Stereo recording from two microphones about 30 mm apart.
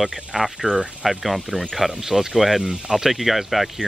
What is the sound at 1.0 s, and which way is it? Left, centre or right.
Speech, centre.